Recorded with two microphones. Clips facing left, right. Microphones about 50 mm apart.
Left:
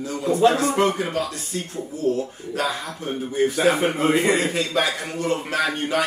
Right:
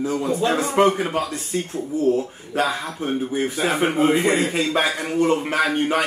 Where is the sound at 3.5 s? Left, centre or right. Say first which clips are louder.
Right 1 dB; centre.